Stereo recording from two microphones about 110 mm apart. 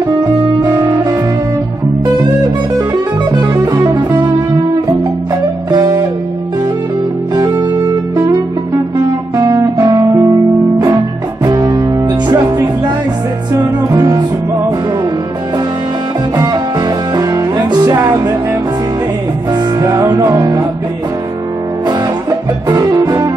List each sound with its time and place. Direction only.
3.3 s music: 35° right (ahead or behind)
5.7 s music: 40° right (ahead or behind)
7.3 s music: 35° right (ahead or behind)
9.4 s guitar: 30° right (ahead or behind)
9.8 s music: 35° right (ahead or behind)
16.3 s music: 35° right (ahead or behind)
21.8 s music: 35° right (ahead or behind)